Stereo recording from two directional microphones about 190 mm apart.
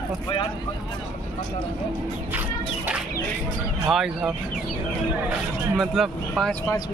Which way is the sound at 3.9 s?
Centre (ahead or behind).